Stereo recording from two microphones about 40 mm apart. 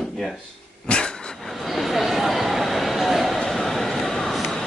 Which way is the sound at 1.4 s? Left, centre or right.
Centre.